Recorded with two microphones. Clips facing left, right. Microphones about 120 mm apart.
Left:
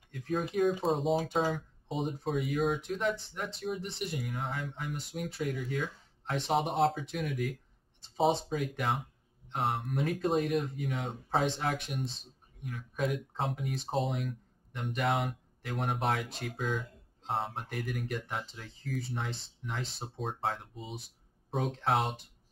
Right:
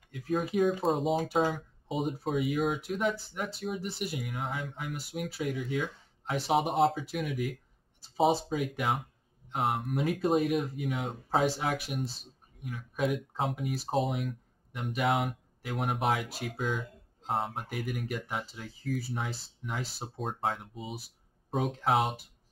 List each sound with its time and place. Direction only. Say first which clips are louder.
0.1 s speech: right 2 dB; 5° right (ahead or behind)